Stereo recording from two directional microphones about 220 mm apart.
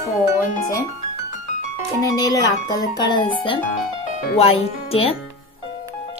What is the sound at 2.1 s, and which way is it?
Speech, 15° left (ahead or behind).